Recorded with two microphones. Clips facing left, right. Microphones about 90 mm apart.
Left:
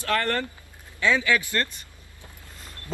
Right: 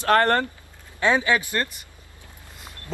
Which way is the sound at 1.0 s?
25° right (ahead or behind).